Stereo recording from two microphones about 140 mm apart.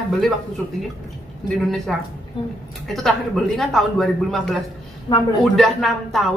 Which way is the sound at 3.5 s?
Centre (ahead or behind).